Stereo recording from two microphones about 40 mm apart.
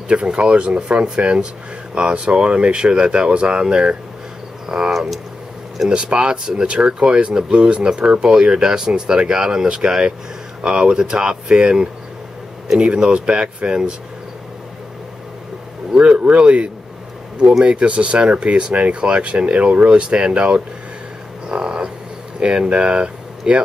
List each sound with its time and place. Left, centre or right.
0.1 s speech: right
16.0 s speech: right
21.5 s frog: right
22.7 s speech: right